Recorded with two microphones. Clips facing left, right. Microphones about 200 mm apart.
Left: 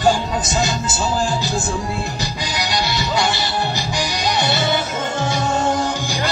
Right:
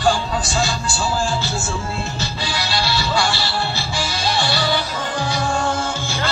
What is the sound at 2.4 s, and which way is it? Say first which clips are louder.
Music: left 1 dB; 15° left (ahead or behind).